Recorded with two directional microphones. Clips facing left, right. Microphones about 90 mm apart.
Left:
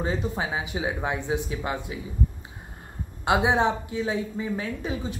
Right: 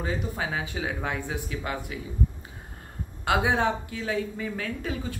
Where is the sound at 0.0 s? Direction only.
20° left (ahead or behind).